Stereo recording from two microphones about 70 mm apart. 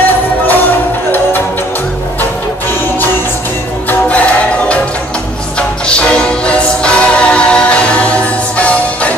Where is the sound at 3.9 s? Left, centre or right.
Left.